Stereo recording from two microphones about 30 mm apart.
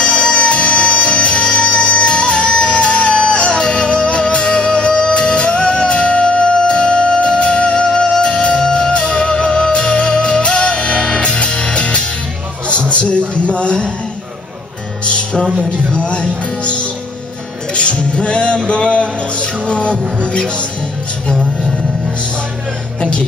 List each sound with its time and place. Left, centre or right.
0.0 s music: left
3.5 s music: left
12.9 s a sound: left
15.0 s music: left
18.1 s music: left
20.2 s speech: left
22.9 s music: left